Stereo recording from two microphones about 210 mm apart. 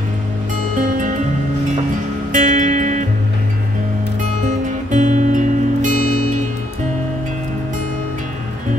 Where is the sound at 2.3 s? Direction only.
35° right (ahead or behind).